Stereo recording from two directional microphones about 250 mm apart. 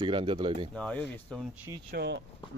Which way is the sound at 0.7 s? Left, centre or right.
Centre.